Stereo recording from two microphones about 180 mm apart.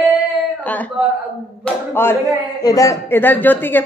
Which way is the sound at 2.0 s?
10° left (ahead or behind).